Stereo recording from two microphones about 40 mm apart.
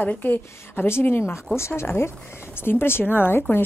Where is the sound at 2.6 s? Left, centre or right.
Left.